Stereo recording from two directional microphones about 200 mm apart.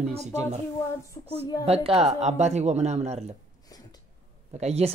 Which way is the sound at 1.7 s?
30° right (ahead or behind).